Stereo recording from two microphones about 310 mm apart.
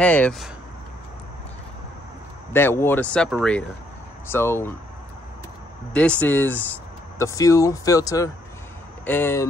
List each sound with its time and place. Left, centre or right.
0.0 s speech: centre
2.5 s speech: centre
5.9 s speech: centre